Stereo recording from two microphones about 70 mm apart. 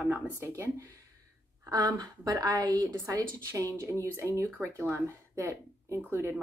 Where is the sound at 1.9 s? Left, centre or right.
Right.